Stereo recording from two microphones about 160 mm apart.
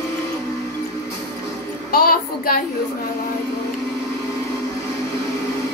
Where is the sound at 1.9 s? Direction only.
65° left (ahead or behind).